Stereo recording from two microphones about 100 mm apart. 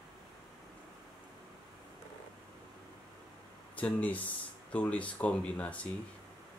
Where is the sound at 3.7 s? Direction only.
15° left (ahead or behind).